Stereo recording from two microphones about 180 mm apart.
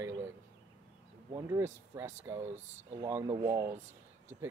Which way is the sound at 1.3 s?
15° right (ahead or behind).